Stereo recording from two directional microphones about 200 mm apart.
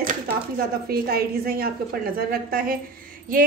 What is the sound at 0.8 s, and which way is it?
A woman's voice, 50° right (ahead or behind).